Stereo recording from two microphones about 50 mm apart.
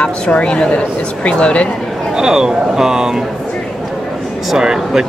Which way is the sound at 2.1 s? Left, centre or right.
Centre.